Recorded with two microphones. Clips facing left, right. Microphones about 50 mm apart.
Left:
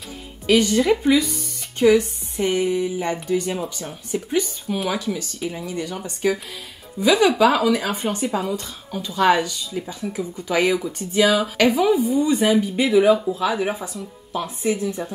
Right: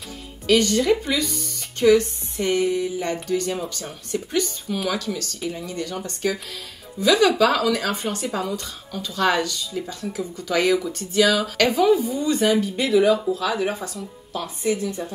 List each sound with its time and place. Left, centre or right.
0.5 s a woman's voice: centre